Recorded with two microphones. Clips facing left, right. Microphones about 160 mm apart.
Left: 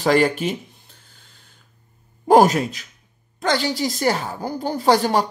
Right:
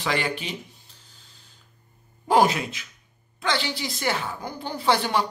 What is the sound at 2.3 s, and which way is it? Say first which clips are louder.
Speech: left 6 dB; 45° left (ahead or behind).